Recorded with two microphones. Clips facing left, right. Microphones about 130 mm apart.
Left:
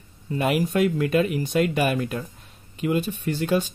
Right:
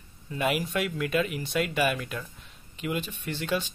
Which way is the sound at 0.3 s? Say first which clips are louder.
Left 5 dB; 45° left (ahead or behind).